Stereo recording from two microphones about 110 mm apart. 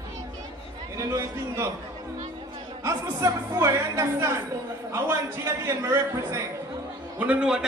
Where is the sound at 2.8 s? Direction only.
30° right (ahead or behind).